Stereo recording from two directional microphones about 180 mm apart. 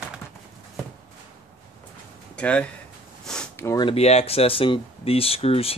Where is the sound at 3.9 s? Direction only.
35° left (ahead or behind).